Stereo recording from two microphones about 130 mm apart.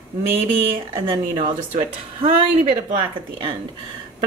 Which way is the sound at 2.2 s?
45° right (ahead or behind).